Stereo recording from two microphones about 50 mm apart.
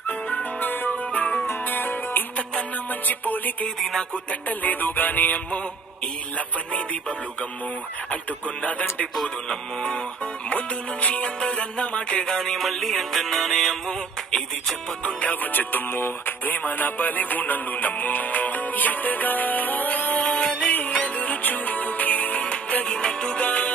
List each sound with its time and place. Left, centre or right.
0.1 s music: left
6.3 s music: left
9.5 s music: centre
12.4 s music: centre
15.1 s music: left